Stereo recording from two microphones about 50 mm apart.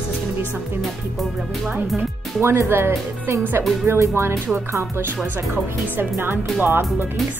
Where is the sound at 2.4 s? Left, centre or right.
Right.